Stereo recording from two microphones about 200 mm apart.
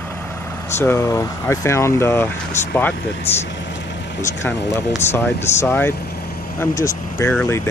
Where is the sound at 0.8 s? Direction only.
15° left (ahead or behind).